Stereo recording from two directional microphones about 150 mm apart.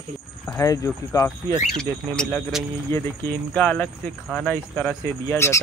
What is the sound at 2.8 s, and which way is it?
Speech, 15° left (ahead or behind).